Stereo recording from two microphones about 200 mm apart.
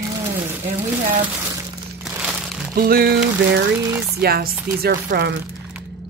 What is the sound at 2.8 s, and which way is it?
Speech, 50° right (ahead or behind).